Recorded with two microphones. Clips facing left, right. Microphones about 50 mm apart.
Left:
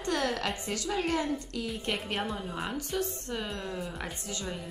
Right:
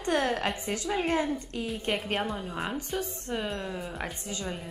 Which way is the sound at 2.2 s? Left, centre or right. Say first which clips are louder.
Right 2 dB; centre.